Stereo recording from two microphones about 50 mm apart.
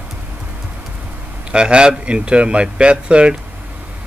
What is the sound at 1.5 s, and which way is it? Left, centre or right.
Speech, centre.